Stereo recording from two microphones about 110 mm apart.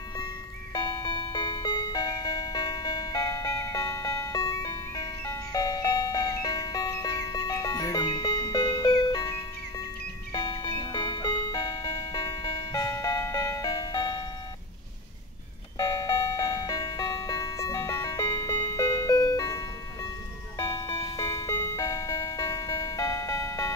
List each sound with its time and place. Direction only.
0.7 s music: 30° left (ahead or behind)
1.0 s music: 45° left (ahead or behind)
15.8 s music: 30° left (ahead or behind)
18.2 s music: 40° left (ahead or behind)
20.5 s music: 25° left (ahead or behind)